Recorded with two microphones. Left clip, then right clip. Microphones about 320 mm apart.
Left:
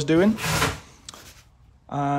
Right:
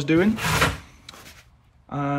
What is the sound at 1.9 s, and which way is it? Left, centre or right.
Speech, centre.